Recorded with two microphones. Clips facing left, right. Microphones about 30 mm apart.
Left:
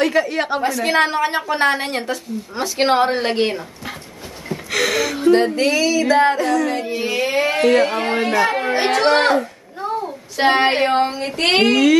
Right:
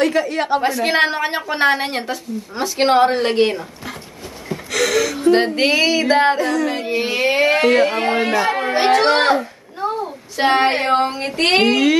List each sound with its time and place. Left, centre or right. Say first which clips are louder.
0.0 s speech: even; centre
0.6 s a woman's voice: right 1 dB; centre
4.6 s gasp: right 1 dB; centre
5.6 s music: right 1 dB; right
6.3 s a woman's voice: left 1 dB; centre
7.2 s speech: right 3 dB; right
7.6 s speech: right 1 dB; centre
8.7 s a woman's voice: right 2 dB; centre
10.0 s child singing: left 2 dB; centre
10.7 s a woman's voice: even; centre